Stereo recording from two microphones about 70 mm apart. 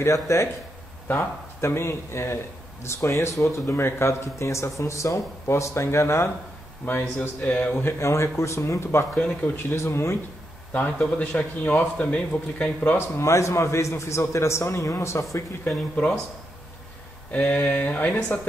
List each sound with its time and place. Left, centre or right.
0.0 s a man's voice: left
7.4 s a man's voice: left
8.0 s a man's voice: left
9.1 s a man's voice: left
9.8 s a man's voice: left
10.7 s a man's voice: centre
13.2 s a man's voice: left
15.6 s a man's voice: centre
17.3 s a man's voice: left